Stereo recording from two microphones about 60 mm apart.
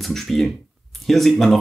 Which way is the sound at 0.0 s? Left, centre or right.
Centre.